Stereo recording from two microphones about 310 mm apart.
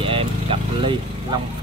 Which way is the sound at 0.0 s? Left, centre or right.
Centre.